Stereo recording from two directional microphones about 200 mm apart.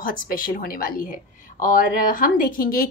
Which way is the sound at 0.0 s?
45° left (ahead or behind).